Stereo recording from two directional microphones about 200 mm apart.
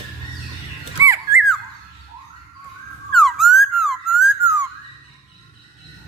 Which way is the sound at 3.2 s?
Centre (ahead or behind).